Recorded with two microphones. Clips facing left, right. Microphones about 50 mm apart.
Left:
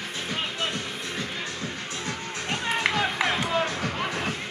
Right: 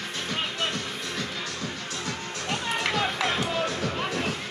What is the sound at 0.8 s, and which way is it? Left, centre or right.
Music, centre.